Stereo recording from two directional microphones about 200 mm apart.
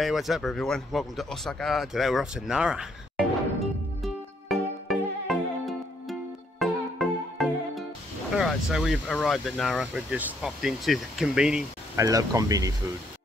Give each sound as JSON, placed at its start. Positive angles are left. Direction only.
{"t": 0.0, "sound": "a sound", "side_deg": 0}
{"t": 6.6, "sound": "music", "side_deg": 0}
{"t": 8.4, "sound": "speech", "side_deg": -5}
{"t": 12.0, "sound": "speech", "side_deg": -15}